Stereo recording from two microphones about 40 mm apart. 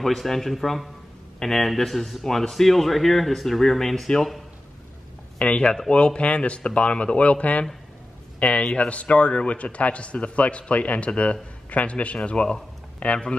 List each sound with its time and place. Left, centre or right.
0.0 s a man's voice: centre
5.4 s a man's voice: left